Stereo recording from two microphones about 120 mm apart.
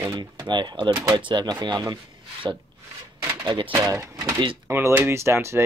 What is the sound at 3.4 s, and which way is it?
Speech, 40° right (ahead or behind).